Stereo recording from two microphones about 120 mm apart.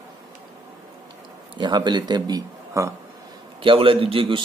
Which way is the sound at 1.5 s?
40° right (ahead or behind).